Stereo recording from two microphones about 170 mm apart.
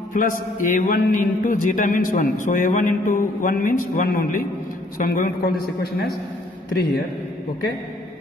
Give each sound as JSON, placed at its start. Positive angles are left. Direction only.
{"t": 0.1, "sound": "a man's voice", "side_deg": 50}